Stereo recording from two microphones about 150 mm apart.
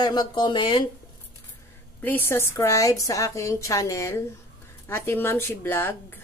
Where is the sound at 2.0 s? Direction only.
15° left (ahead or behind).